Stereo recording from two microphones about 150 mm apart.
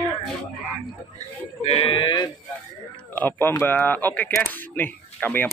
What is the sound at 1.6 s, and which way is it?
Speech, 40° left (ahead or behind).